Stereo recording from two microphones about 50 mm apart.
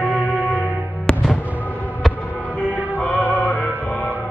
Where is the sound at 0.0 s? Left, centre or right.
Right.